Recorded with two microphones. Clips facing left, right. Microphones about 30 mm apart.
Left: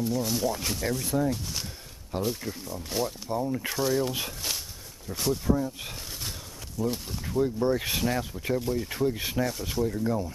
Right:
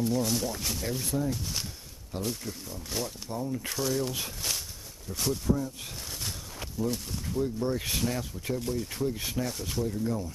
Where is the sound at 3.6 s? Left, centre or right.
Centre.